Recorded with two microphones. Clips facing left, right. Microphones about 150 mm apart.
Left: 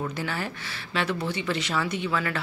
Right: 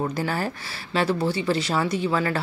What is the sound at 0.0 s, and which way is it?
A woman's voice, 40° right (ahead or behind).